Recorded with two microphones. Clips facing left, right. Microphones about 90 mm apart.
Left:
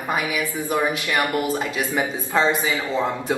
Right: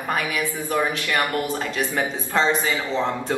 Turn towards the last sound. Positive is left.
turn(degrees=10)  # may be behind; listen again after turning